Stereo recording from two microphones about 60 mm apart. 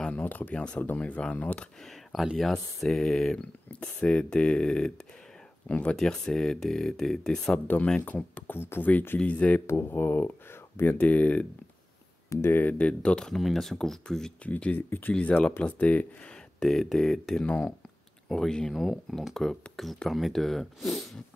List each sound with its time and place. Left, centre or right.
0.0 s speech: left
2.8 s speech: centre
3.3 s speech: centre
5.9 s speech: centre
8.0 s speech: left
8.5 s speech: left
9.2 s speech: left
9.7 s speech: left
12.3 s speech: left
12.7 s speech: centre
14.4 s speech: left
16.5 s speech: centre
17.5 s speech: centre